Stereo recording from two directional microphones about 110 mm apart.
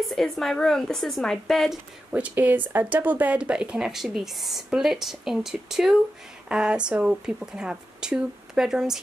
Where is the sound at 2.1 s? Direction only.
15° right (ahead or behind).